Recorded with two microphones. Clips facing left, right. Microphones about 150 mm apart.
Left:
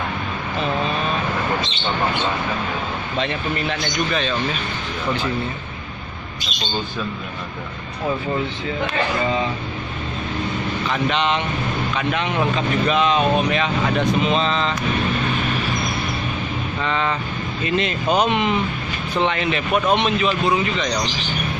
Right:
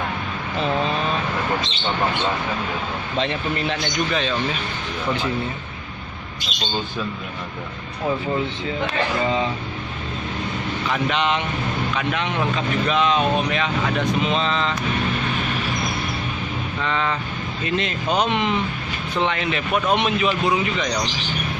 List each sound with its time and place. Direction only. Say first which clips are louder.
3.2 s speech: even; 25° right (ahead or behind)
10.9 s speech: left 1 dB; 5° right (ahead or behind)
16.8 s speech: left 1 dB; 5° left (ahead or behind)